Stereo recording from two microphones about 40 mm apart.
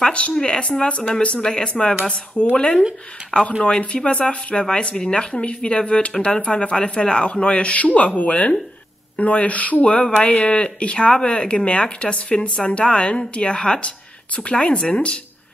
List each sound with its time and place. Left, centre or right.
0.0 s speech: left
0.3 s speech: centre
0.6 s speech: left